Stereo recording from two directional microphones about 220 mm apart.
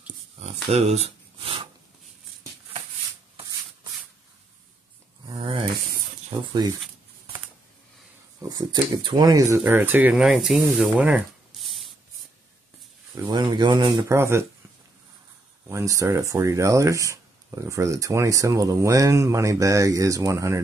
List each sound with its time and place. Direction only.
0.4 s speech: 30° right (ahead or behind)
5.2 s a sound: 20° right (ahead or behind)
6.3 s speech: 25° right (ahead or behind)
8.4 s speech: 15° right (ahead or behind); by 11.9 s centre (ahead or behind)
13.1 s speech: 20° right (ahead or behind)
15.7 s speech: 15° right (ahead or behind)